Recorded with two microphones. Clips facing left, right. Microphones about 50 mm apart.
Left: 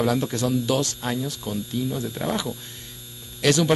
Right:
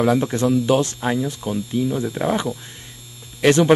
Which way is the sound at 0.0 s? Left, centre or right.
Right.